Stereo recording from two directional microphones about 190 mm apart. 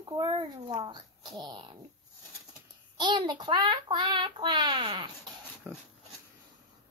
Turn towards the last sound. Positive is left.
turn(degrees=-10)  # may be behind; listen again after turning